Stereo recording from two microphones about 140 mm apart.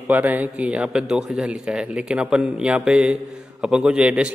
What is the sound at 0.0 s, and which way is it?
Speech, 10° right (ahead or behind).